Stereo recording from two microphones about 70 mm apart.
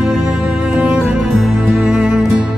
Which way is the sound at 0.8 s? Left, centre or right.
Centre.